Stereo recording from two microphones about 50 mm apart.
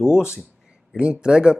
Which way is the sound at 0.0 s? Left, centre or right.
Centre.